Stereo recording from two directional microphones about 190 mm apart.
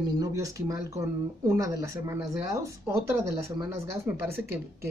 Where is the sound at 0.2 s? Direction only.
15° right (ahead or behind).